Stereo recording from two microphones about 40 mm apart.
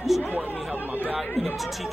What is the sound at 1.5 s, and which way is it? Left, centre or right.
Speech, centre.